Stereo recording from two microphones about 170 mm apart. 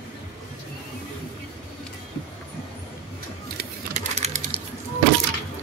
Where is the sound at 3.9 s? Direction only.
40° right (ahead or behind).